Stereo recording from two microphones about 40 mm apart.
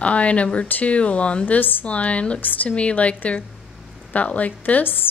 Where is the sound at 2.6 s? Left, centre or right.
Left.